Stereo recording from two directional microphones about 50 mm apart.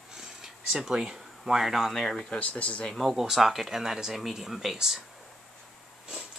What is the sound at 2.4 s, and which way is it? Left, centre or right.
Speech, left.